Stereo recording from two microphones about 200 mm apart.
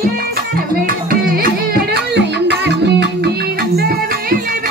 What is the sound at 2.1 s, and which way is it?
Music, 60° right (ahead or behind).